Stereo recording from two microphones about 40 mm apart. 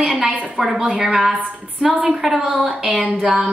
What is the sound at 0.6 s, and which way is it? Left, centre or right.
A woman's voice, centre.